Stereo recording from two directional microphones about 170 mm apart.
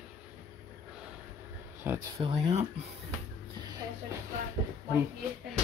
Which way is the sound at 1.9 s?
10° right (ahead or behind).